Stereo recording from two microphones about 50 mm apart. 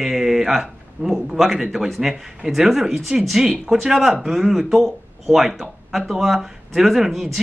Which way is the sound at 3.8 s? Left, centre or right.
Centre.